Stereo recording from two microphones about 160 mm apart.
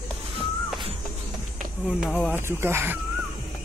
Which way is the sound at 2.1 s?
10° left (ahead or behind).